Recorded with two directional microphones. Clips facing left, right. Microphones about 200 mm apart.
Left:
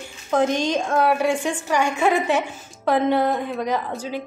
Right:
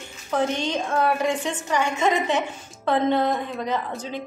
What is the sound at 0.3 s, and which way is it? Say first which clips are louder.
A woman's voice: left 4 dB; 15° left (ahead or behind).